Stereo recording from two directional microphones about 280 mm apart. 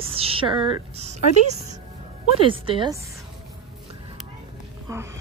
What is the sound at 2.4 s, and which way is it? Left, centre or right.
Speech, centre.